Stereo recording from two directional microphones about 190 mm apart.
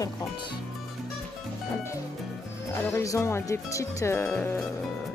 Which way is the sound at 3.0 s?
15° left (ahead or behind).